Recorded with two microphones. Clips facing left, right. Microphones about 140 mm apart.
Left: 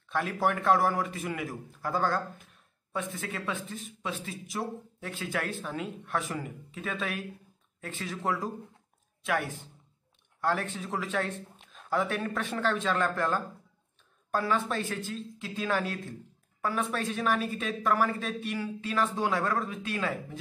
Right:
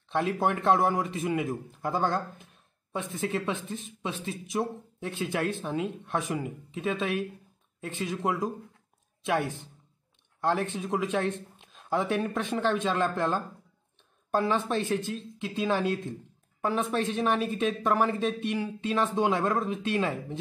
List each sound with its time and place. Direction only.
0.1 s speech: 25° right (ahead or behind)
10.4 s speech: 20° right (ahead or behind)